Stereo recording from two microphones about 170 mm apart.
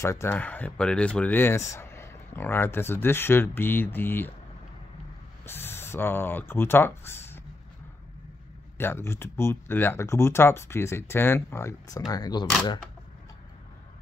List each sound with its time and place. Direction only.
0.0 s speech: 15° left (ahead or behind)
5.4 s speech: 15° left (ahead or behind)
8.7 s speech: 15° left (ahead or behind)